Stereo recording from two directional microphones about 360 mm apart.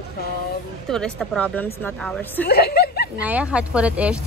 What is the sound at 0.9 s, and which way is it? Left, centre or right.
Speech, centre.